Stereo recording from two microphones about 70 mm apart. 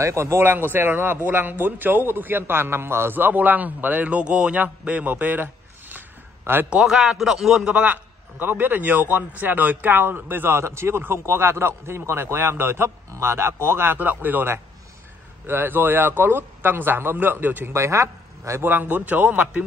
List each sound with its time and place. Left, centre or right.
0.0 s speech: right
6.7 s a man's voice: centre
7.6 s a man's voice: centre
17.7 s a man's voice: right
18.6 s speech: right